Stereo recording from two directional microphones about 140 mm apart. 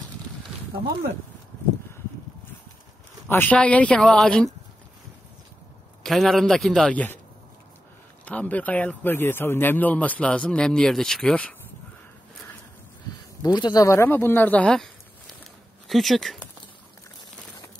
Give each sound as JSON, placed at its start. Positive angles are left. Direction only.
{"t": 3.3, "sound": "speech", "side_deg": 15}
{"t": 6.0, "sound": "a man's voice", "side_deg": 0}
{"t": 8.3, "sound": "speech", "side_deg": 10}
{"t": 13.4, "sound": "speech", "side_deg": 30}
{"t": 15.9, "sound": "a man's voice", "side_deg": 0}